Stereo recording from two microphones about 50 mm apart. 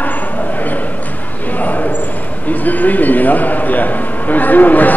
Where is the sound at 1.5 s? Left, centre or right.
Left.